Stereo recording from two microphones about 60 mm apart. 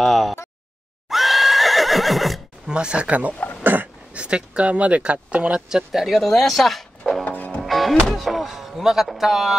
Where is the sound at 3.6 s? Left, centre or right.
Right.